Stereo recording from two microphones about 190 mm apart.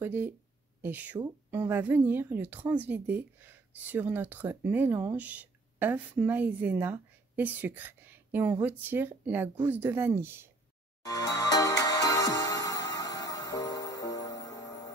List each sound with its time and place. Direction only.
0.0 s a woman's voice: 10° right (ahead or behind)
11.1 s music: 20° left (ahead or behind)